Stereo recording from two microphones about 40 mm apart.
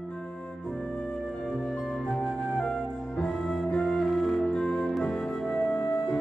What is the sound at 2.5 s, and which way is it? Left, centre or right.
Music, left.